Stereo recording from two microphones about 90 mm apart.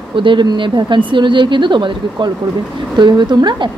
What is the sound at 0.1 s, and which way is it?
Speech, 65° right (ahead or behind).